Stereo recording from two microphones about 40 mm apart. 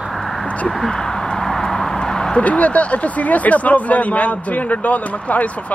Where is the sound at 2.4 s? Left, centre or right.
Left.